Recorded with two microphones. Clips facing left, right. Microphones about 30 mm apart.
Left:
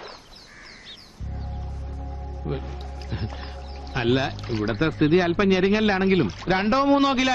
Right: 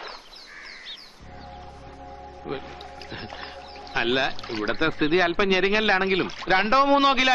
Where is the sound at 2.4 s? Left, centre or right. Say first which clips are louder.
Left 1 dB; centre.